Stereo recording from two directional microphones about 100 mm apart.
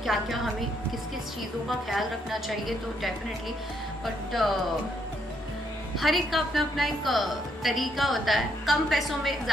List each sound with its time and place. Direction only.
0.0 s a woman's voice: centre (ahead or behind)
1.7 s a woman's voice: centre (ahead or behind)
5.9 s a woman's voice: centre (ahead or behind)